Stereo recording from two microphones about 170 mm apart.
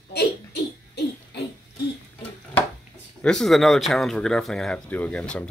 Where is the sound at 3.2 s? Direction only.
5° left (ahead or behind).